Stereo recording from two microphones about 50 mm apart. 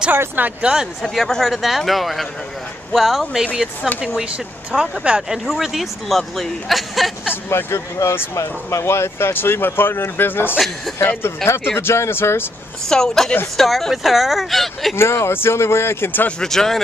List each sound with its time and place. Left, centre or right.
0.1 s speech: right
0.6 s speech: centre
1.0 s speech: centre
4.7 s speech: right
5.3 s speech: centre
7.4 s speech: left
8.4 s speech: left
11.2 s speech: left
12.8 s a woman's voice: centre
15.0 s speech: left
16.4 s a woman's voice: centre